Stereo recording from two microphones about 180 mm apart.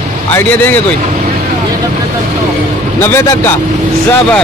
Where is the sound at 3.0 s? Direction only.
15° left (ahead or behind).